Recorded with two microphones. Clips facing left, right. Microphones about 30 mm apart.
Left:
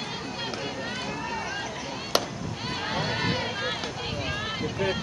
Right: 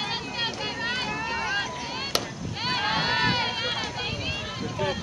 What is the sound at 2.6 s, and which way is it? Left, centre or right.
Run, right.